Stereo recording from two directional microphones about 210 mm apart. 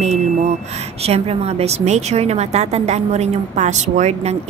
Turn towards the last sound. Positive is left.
turn(degrees=-35)  # may be behind; listen again after turning